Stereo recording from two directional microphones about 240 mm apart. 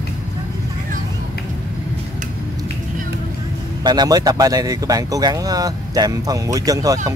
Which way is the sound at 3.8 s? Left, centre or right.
Centre.